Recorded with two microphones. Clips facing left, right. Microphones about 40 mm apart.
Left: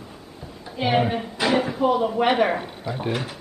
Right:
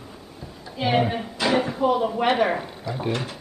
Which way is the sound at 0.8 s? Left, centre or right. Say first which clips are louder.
Left 1 dB; centre.